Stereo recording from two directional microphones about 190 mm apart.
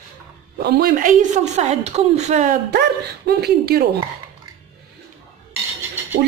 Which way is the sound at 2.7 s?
60° right (ahead or behind).